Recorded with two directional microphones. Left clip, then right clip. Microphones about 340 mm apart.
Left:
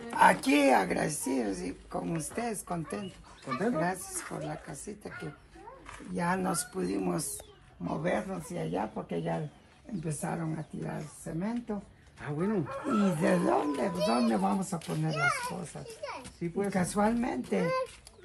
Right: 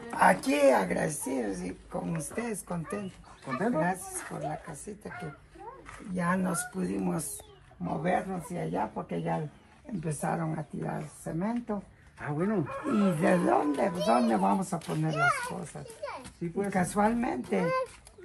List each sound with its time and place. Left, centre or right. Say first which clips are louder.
0.0 s speech: left 1 dB; centre
12.6 s speech: right 1 dB; left
12.9 s speech: right 2 dB; centre